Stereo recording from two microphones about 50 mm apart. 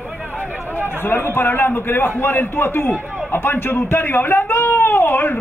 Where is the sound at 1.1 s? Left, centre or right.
Left.